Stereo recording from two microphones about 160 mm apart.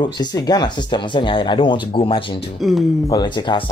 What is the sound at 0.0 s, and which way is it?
Speech, 25° left (ahead or behind).